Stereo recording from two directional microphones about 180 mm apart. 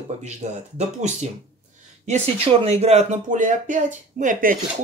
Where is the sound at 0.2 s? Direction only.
40° right (ahead or behind).